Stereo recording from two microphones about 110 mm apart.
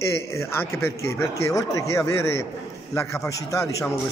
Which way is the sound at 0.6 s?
20° left (ahead or behind).